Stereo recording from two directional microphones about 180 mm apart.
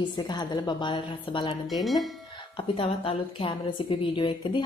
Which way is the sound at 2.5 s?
30° left (ahead or behind).